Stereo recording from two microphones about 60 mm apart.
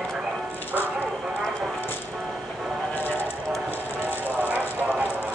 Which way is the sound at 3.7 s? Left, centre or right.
Left.